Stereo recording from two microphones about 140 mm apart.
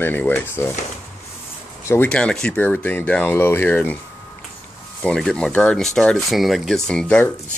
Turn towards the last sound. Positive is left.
turn(degrees=5)  # may be behind; listen again after turning